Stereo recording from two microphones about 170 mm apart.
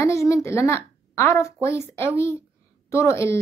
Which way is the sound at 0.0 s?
15° left (ahead or behind).